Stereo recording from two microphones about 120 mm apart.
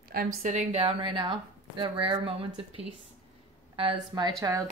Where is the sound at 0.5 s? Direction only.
70° right (ahead or behind).